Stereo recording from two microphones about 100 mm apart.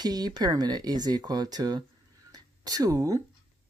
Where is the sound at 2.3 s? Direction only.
40° right (ahead or behind).